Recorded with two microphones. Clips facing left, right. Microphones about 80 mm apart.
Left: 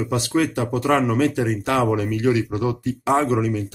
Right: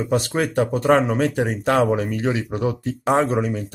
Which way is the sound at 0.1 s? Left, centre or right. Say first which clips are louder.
Right 1 dB; right.